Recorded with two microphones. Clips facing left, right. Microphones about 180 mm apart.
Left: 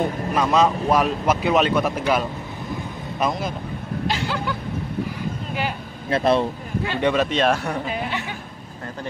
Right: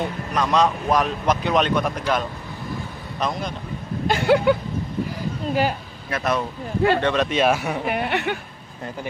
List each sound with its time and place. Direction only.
0.3 s speech: 5° left (ahead or behind)
4.1 s speech: 60° right (ahead or behind)
5.5 s a woman's voice: 40° right (ahead or behind)
6.0 s speech: 30° left (ahead or behind)
7.0 s speech: 10° left (ahead or behind)
7.2 s speech: 5° right (ahead or behind)
7.8 s speech: 65° right (ahead or behind)